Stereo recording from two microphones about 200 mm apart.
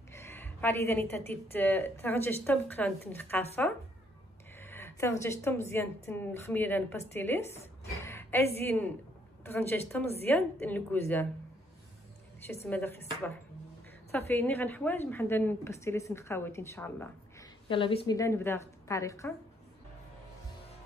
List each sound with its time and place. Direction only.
0.1 s a woman's voice: 10° left (ahead or behind)
4.6 s a woman's voice: 10° left (ahead or behind)
8.0 s a sound: 10° left (ahead or behind)
8.6 s a woman's voice: 10° left (ahead or behind)
12.6 s a woman's voice: 10° left (ahead or behind)
14.1 s a woman's voice: 10° left (ahead or behind)
17.6 s a woman's voice: 25° left (ahead or behind)